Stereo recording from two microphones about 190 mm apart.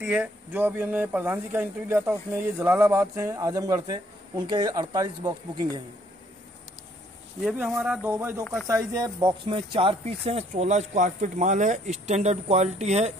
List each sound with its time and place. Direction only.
0.0 s speech: 10° right (ahead or behind)
7.4 s speech: centre (ahead or behind)
8.9 s speech: 20° right (ahead or behind)